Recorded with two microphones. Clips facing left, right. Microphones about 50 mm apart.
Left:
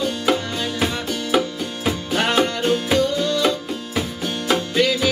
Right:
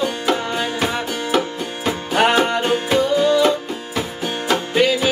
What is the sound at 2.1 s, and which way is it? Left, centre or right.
Music, centre.